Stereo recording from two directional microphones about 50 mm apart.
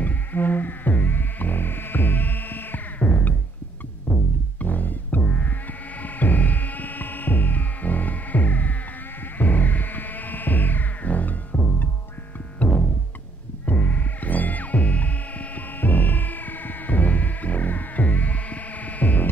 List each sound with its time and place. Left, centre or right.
0.0 s music: left